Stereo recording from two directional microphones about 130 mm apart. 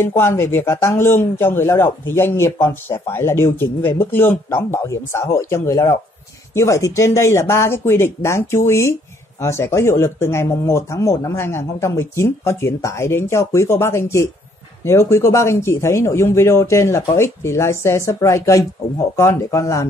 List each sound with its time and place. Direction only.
0.0 s speech: 20° left (ahead or behind)